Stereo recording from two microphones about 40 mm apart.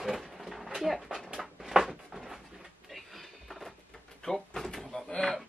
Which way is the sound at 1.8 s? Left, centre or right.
Centre.